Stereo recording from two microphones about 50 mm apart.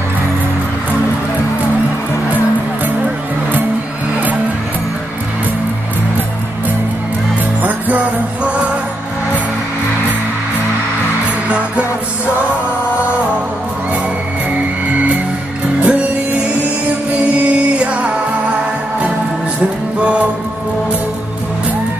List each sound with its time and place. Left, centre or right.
11.4 s music: right
14.5 s music: right
20.0 s music: right